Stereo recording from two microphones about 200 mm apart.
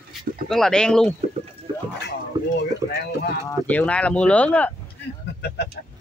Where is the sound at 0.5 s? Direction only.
5° left (ahead or behind).